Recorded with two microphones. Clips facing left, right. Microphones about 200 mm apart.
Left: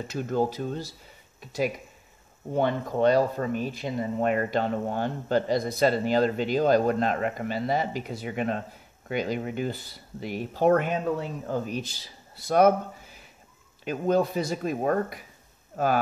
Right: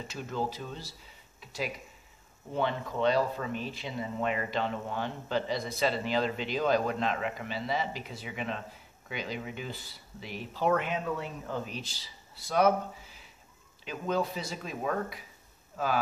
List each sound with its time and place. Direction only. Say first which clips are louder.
0.1 s speech: left 8 dB; 45° left (ahead or behind)
2.5 s speech: left 6 dB; 45° left (ahead or behind)
13.8 s speech: left 7 dB; 50° left (ahead or behind)